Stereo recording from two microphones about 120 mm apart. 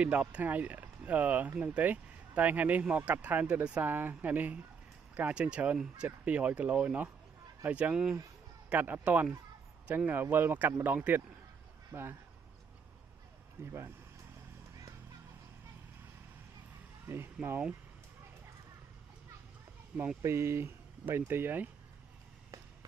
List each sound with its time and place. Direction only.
0.0 s speech: 10° right (ahead or behind)
13.7 s speech: 20° right (ahead or behind)
17.1 s speech: 20° right (ahead or behind)
20.2 s speech: 25° right (ahead or behind)